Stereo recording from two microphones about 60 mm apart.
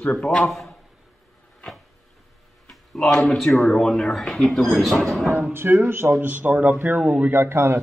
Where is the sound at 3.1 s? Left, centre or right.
Centre.